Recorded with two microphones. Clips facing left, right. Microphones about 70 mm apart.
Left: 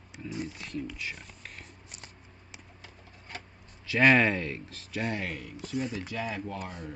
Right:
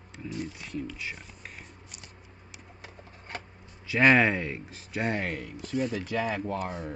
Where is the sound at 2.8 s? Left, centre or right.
Right.